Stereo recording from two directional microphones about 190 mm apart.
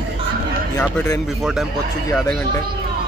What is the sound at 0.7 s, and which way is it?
Speech, 15° left (ahead or behind).